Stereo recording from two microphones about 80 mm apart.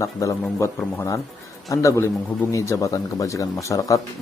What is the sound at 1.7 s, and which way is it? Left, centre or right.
Speech, left.